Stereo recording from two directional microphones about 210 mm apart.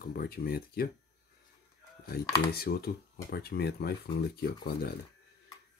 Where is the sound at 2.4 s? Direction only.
45° left (ahead or behind).